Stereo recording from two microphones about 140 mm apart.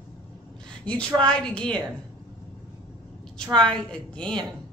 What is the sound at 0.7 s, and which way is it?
A woman's voice, 5° left (ahead or behind).